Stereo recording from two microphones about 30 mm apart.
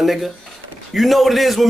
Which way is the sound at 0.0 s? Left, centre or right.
Centre.